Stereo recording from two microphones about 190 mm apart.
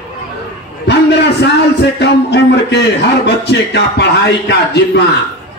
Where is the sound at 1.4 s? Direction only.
60° left (ahead or behind).